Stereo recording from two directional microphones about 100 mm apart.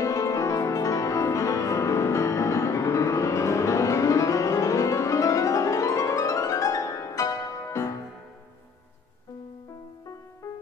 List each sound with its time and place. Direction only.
0.0 s music: 35° left (ahead or behind)